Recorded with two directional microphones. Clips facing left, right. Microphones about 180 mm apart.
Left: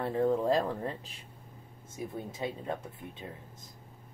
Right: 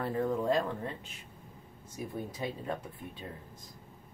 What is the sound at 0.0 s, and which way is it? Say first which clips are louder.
Speech: left 3 dB; 25° left (ahead or behind).